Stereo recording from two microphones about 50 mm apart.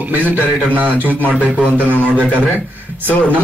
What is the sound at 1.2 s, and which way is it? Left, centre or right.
Speech, right.